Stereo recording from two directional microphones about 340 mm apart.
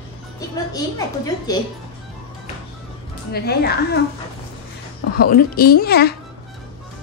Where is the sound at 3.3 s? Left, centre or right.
Left.